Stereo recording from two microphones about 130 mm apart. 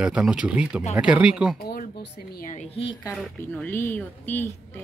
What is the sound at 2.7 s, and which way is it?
Speech, 40° left (ahead or behind).